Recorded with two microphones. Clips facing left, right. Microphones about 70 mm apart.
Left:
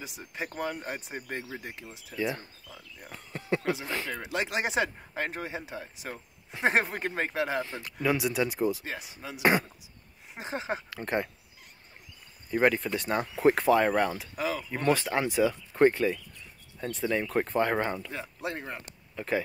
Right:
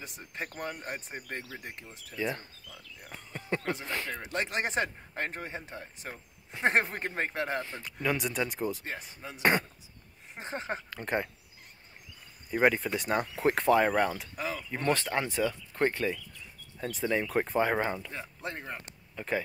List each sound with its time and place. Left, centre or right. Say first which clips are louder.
0.0 s speech: left 2 dB; centre
1.3 s speech: left 3 dB; centre
12.4 s speech: left 1 dB; centre